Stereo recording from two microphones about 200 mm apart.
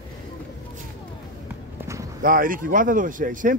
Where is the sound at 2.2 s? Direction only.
45° right (ahead or behind).